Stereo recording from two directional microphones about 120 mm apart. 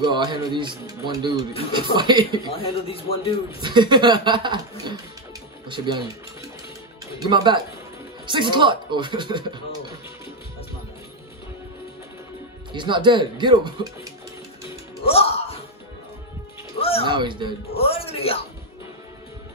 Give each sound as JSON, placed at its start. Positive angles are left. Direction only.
{"t": 0.1, "sound": "speech", "side_deg": -40}
{"t": 2.5, "sound": "speech", "side_deg": 50}
{"t": 3.6, "sound": "speech", "side_deg": -40}
{"t": 7.2, "sound": "speech", "side_deg": -40}
{"t": 12.7, "sound": "speech", "side_deg": -40}
{"t": 15.0, "sound": "speech", "side_deg": 55}
{"t": 17.0, "sound": "speech", "side_deg": -40}
{"t": 17.7, "sound": "speech", "side_deg": 55}